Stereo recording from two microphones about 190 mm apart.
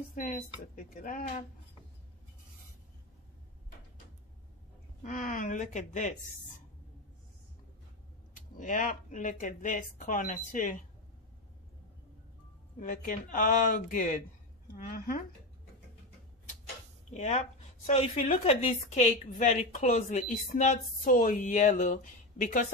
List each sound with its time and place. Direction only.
0.1 s speech: 45° left (ahead or behind)
5.0 s speech: 40° left (ahead or behind)
8.4 s speech: 45° left (ahead or behind)
12.8 s speech: 40° left (ahead or behind)
17.1 s speech: 35° left (ahead or behind)